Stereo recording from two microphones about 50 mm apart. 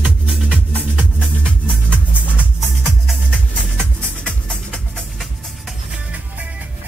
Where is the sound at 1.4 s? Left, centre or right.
Left.